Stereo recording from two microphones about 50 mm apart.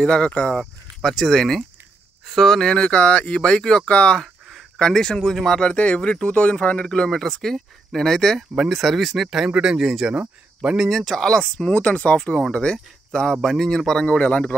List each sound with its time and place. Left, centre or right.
0.0 s speech: centre
0.6 s speech: centre
2.7 s speech: left
7.1 s speech: centre
8.4 s speech: centre
10.9 s speech: centre
11.1 s speech: centre
11.7 s speech: left
13.3 s speech: centre
14.0 s speech: left